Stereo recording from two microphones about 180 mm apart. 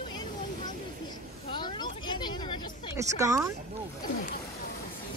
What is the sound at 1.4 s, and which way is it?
Vehicle, 25° left (ahead or behind).